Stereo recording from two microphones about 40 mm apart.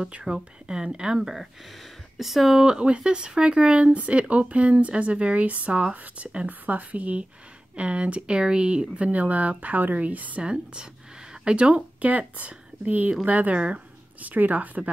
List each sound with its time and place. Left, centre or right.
0.2 s speech: centre
2.6 s speech: right
10.4 s speech: right